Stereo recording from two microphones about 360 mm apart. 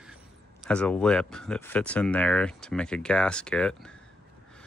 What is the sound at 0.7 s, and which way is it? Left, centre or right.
Speech, centre.